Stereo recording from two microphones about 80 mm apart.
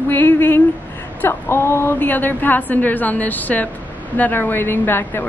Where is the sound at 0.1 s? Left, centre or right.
Left.